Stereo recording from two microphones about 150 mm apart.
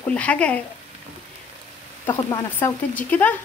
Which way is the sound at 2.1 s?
20° left (ahead or behind).